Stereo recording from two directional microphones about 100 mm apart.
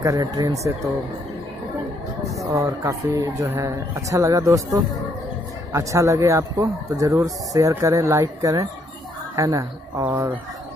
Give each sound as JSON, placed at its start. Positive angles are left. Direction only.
{"t": 0.0, "sound": "speech", "side_deg": -35}
{"t": 2.4, "sound": "speech", "side_deg": -35}
{"t": 10.1, "sound": "speech", "side_deg": -20}